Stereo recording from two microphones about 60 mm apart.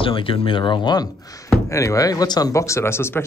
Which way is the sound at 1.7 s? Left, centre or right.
Left.